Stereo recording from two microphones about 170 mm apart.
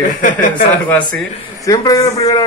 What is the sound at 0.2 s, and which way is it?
Speech, 50° left (ahead or behind).